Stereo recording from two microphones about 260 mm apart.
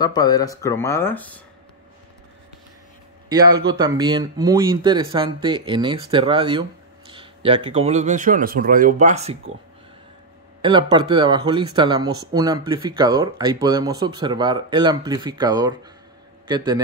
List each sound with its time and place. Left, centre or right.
0.0 s speech: centre
3.3 s speech: centre
10.6 s speech: centre